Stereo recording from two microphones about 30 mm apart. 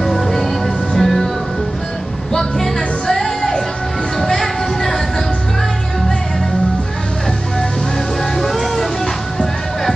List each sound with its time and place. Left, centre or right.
0.0 s music: centre
2.3 s music: centre
8.2 s music: centre